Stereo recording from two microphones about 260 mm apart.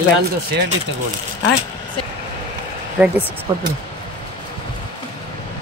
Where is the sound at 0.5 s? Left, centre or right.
Right.